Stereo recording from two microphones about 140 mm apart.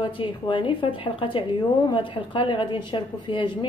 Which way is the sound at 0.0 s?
35° left (ahead or behind).